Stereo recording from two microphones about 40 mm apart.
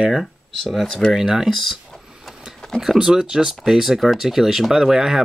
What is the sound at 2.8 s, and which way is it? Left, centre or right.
Speech, centre.